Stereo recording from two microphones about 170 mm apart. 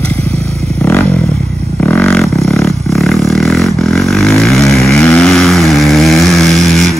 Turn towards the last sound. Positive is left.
turn(degrees=0)  # may be behind; listen again after turning